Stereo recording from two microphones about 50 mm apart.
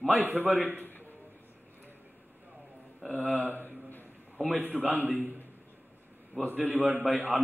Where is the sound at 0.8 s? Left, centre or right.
Left.